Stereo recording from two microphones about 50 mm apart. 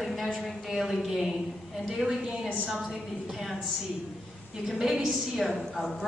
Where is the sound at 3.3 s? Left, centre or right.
Centre.